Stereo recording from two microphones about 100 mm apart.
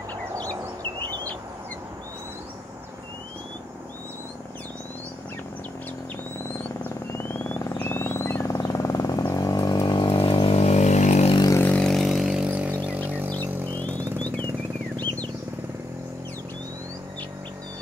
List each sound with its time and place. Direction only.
6.8 s vehicle: 20° left (ahead or behind); by 11.3 s 90° left
11.5 s vehicle: 20° left (ahead or behind)
11.8 s vehicle: centre (ahead or behind)
13.7 s music: 15° left (ahead or behind)